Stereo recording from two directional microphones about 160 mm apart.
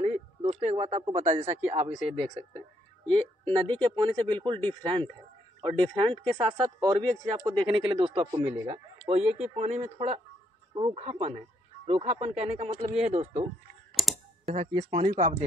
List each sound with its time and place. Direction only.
0.0 s a sound: 40° right (ahead or behind)
1.7 s speech: 40° right (ahead or behind)
6.3 s speech: 20° right (ahead or behind)
9.1 s speech: 45° right (ahead or behind)
10.7 s speech: 35° right (ahead or behind)
14.0 s computer keyboard: centre (ahead or behind)
14.4 s speech: 40° right (ahead or behind)